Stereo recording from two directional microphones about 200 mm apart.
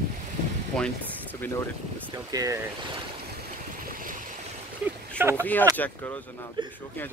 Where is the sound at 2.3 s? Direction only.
20° right (ahead or behind).